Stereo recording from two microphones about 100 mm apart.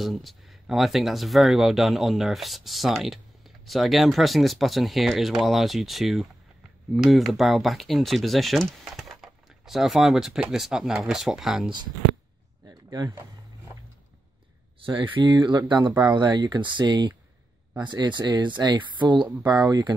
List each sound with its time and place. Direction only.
0.0 s speech: centre (ahead or behind)
14.8 s speech: 55° right (ahead or behind); by 19.9 s 40° right (ahead or behind)